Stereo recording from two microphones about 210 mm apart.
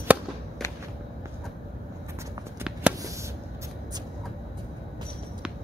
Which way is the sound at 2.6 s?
5° right (ahead or behind).